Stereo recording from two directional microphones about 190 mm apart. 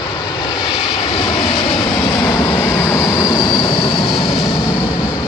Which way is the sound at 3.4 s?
25° left (ahead or behind).